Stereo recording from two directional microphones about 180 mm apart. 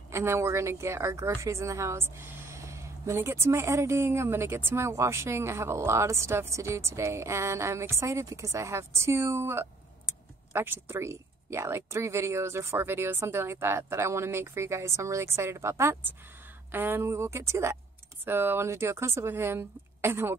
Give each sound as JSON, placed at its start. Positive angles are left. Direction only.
{"t": 0.1, "sound": "a woman's voice", "side_deg": -15}